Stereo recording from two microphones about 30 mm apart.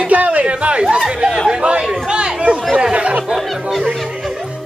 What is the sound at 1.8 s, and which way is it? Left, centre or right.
Speech, right.